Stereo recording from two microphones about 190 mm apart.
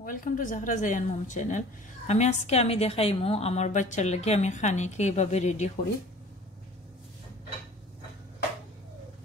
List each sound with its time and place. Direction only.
0.0 s a woman's voice: 45° left (ahead or behind)